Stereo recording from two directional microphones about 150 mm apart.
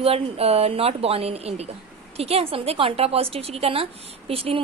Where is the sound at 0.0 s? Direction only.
40° right (ahead or behind).